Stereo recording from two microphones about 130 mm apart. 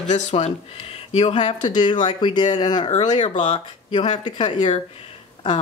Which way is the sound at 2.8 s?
65° left (ahead or behind).